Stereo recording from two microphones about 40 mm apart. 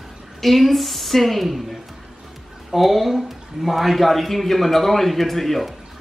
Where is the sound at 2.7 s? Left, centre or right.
Centre.